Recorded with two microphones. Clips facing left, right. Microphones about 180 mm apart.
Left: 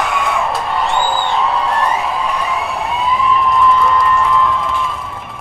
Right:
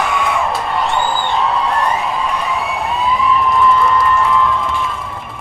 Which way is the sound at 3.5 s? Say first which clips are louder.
Even; centre (ahead or behind).